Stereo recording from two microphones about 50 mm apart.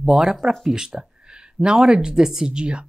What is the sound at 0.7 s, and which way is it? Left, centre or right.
Speech, centre.